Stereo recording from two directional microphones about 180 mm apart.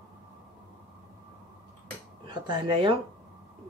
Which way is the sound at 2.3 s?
25° right (ahead or behind).